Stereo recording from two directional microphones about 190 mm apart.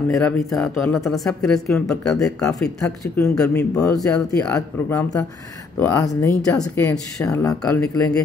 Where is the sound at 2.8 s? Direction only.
15° left (ahead or behind).